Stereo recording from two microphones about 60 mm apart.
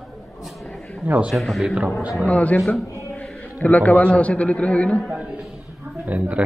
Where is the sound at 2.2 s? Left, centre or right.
Left.